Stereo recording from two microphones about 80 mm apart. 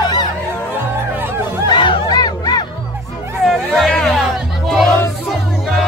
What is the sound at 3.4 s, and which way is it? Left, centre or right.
Music, centre.